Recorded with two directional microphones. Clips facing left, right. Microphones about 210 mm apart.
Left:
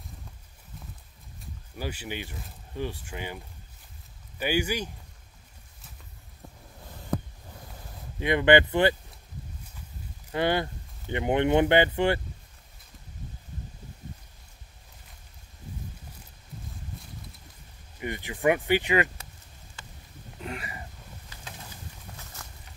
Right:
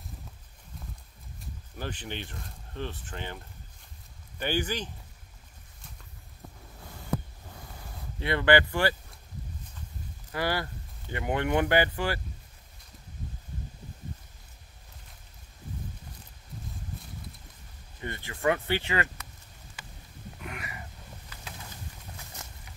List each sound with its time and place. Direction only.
1.4 s speech: 10° left (ahead or behind)
8.2 s speech: 15° left (ahead or behind)
10.3 s speech: 20° left (ahead or behind)
17.9 s speech: 15° left (ahead or behind)
20.4 s a sound: 30° left (ahead or behind)
22.4 s boat: 20° right (ahead or behind)